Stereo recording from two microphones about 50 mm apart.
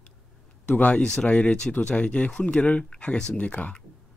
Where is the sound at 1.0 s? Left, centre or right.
Centre.